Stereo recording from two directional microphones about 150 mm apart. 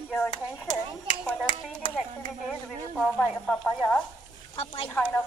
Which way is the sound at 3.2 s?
10° left (ahead or behind).